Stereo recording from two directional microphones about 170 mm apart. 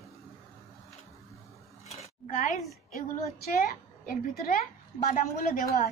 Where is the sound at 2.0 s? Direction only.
45° left (ahead or behind).